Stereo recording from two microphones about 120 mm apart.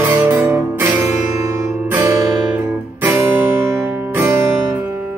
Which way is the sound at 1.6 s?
25° right (ahead or behind).